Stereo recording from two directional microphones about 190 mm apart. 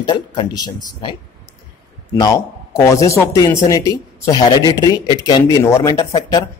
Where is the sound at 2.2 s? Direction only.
15° left (ahead or behind).